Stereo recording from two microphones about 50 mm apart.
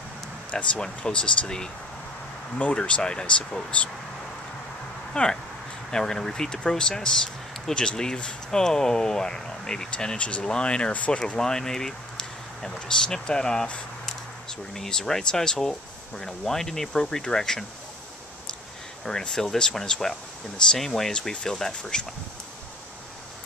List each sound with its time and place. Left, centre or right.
0.5 s speech: left
5.1 s speech: centre
11.1 s speech: centre
14.7 s speech: centre
19.0 s speech: centre